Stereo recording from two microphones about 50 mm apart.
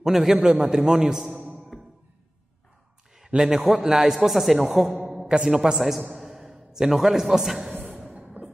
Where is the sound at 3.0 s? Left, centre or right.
Centre.